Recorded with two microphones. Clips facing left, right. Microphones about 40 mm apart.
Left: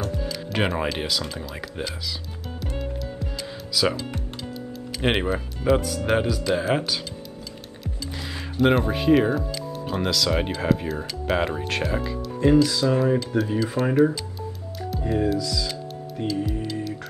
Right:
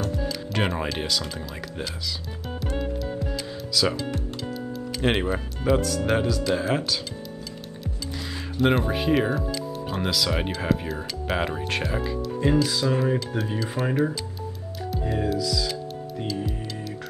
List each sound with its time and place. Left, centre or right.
0.2 s speech: centre
2.6 s music: centre
3.8 s speech: centre
4.6 s music: centre
5.1 s speech: centre
7.8 s speech: centre
14.9 s music: centre